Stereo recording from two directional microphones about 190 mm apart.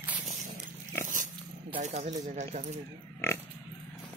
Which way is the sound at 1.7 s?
40° right (ahead or behind).